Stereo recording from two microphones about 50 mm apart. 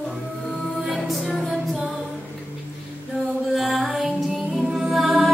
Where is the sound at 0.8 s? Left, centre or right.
Centre.